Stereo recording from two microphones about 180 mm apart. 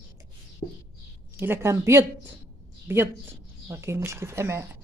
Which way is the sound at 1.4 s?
15° right (ahead or behind).